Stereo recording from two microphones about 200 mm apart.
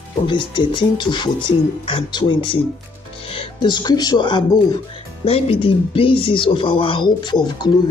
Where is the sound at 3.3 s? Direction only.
25° left (ahead or behind).